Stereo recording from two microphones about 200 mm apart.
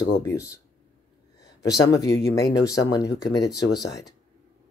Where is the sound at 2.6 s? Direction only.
20° left (ahead or behind).